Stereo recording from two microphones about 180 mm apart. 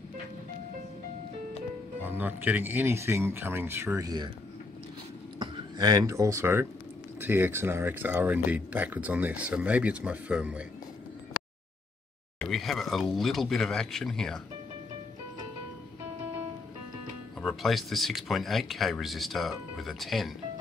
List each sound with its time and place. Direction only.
2.0 s speech: 10° right (ahead or behind)
5.4 s speech: 20° right (ahead or behind)
12.4 s speech: centre (ahead or behind)
17.4 s speech: centre (ahead or behind)